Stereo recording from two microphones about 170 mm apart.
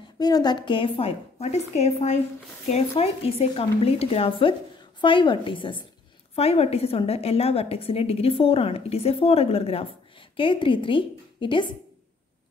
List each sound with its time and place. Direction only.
0.2 s a woman's voice: 25° left (ahead or behind)